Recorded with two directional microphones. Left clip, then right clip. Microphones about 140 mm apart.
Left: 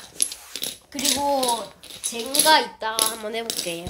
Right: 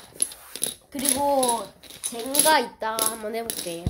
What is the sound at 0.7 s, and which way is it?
Coin, 55° right (ahead or behind).